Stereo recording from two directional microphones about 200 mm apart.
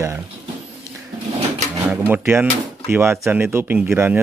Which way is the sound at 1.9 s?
10° right (ahead or behind).